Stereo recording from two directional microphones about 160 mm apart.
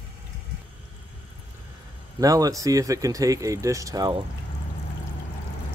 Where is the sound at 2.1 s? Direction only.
20° right (ahead or behind).